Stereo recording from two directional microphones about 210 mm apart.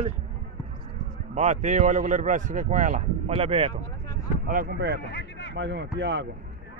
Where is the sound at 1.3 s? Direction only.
35° right (ahead or behind).